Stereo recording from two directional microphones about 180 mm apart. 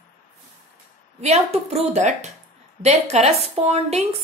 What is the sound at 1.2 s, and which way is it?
A woman's voice, 35° right (ahead or behind).